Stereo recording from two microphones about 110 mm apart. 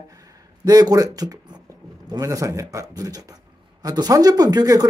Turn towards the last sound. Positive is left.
turn(degrees=-35)  # may be behind; listen again after turning